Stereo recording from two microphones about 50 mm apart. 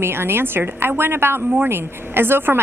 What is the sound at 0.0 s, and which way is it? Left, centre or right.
A woman's voice, right.